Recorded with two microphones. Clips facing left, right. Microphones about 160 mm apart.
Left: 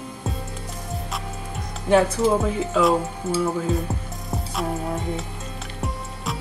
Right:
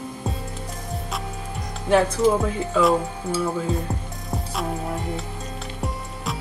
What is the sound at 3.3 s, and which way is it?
Music, 5° left (ahead or behind).